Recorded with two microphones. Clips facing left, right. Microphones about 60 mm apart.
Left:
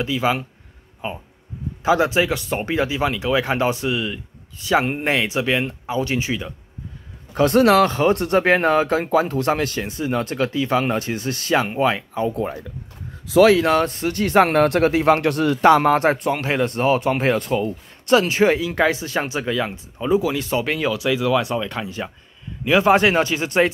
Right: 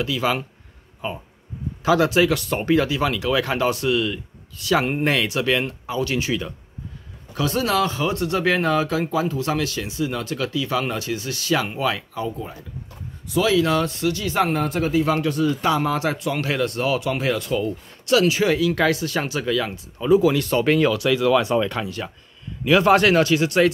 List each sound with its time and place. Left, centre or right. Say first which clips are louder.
0.0 s speech: left 2 dB; left
7.3 s speech: left 7 dB; left
12.3 s speech: left 6 dB; left
13.5 s speech: left 3 dB; left
14.2 s speech: left 9 dB; left
16.3 s speech: left 2 dB; left
20.2 s speech: right 3 dB; centre
21.8 s speech: left 1 dB; centre